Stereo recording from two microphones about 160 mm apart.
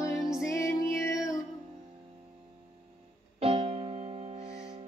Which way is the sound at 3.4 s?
35° right (ahead or behind).